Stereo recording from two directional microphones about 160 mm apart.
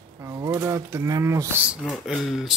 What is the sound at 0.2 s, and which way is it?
Speech, 20° right (ahead or behind).